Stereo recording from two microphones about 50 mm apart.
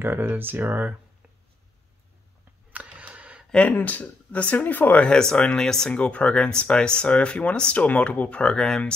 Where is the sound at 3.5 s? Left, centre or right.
Left.